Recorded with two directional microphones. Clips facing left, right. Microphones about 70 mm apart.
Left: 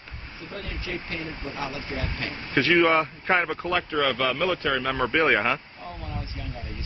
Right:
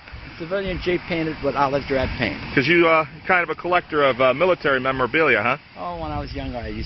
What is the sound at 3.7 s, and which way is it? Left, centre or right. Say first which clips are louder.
Speech: right 8 dB; right.